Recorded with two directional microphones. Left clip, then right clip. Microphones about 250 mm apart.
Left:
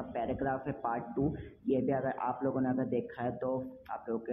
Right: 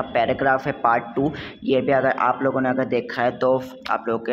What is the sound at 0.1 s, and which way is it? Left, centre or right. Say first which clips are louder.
Speech: right 15 dB; right.